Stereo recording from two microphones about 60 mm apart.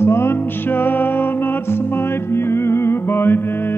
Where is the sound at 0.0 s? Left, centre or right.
Left.